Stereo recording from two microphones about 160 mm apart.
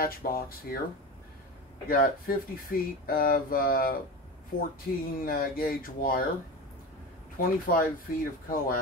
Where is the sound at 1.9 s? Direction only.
65° left (ahead or behind).